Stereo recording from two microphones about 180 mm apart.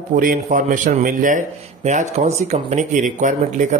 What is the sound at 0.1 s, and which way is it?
A man's voice, 50° right (ahead or behind).